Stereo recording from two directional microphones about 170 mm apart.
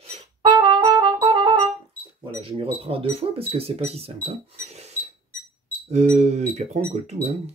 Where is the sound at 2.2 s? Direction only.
35° right (ahead or behind).